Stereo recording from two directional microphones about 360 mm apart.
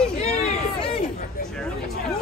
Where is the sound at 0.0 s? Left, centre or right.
Centre.